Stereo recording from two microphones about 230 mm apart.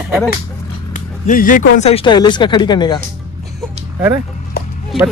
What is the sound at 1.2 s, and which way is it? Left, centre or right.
Speech, left.